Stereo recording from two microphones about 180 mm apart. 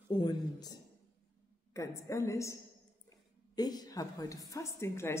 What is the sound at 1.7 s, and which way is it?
Speech, 15° left (ahead or behind).